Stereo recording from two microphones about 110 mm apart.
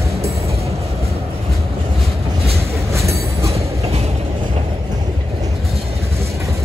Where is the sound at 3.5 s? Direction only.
70° right (ahead or behind).